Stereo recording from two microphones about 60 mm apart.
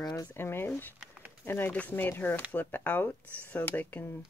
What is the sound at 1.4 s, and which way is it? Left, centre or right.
Speech, left.